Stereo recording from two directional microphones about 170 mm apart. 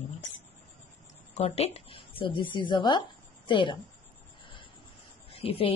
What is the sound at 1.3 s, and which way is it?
A woman's voice, 35° left (ahead or behind).